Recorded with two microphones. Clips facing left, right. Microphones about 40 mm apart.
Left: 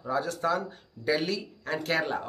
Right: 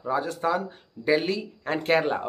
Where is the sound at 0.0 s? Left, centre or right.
Centre.